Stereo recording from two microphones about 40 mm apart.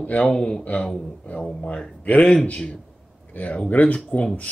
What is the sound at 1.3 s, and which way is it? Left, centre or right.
Speech, left.